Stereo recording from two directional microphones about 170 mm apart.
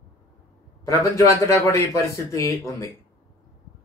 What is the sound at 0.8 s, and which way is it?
A man's voice, 20° left (ahead or behind).